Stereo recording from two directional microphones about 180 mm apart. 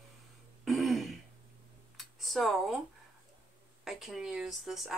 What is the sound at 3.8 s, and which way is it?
Speech, centre (ahead or behind).